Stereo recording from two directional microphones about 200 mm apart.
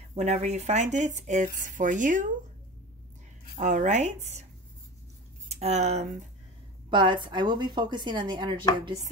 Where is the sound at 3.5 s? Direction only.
35° right (ahead or behind).